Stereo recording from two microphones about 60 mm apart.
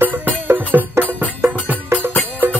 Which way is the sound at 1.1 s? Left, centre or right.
Left.